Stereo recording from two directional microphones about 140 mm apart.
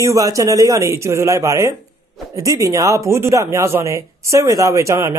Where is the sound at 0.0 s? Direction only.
25° right (ahead or behind).